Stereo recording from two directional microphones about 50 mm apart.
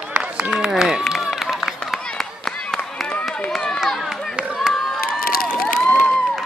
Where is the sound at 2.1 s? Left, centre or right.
Centre.